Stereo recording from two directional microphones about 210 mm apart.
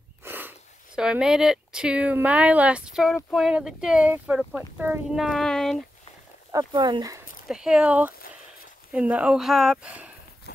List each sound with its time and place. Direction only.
0.2 s speech: 10° right (ahead or behind)
6.5 s speech: 20° right (ahead or behind)
7.4 s speech: 5° right (ahead or behind)